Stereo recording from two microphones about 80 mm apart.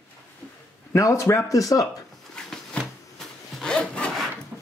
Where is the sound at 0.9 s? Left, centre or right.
Left.